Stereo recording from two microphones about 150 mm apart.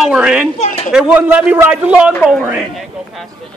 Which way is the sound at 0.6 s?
50° left (ahead or behind).